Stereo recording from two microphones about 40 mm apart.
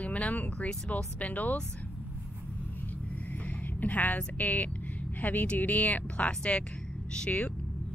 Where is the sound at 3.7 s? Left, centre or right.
Left.